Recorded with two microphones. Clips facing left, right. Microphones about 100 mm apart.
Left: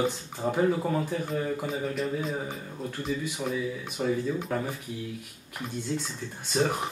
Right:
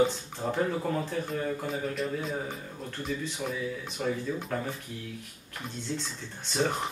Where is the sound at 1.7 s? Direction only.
Centre (ahead or behind).